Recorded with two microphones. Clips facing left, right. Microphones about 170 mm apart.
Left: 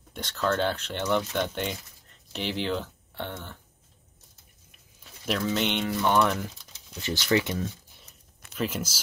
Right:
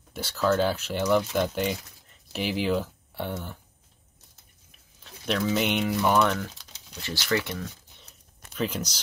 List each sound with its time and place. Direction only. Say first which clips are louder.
0.1 s speech: right 3 dB; 5° right (ahead or behind)
5.2 s speech: right 2 dB; centre (ahead or behind)
6.6 s crumpling: even; 70° right (ahead or behind)
7.0 s speech: left 3 dB; 20° left (ahead or behind)
8.5 s speech: right 1 dB; 5° left (ahead or behind)